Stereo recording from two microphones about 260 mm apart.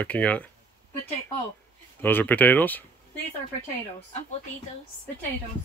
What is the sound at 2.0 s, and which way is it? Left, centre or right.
Speech, centre.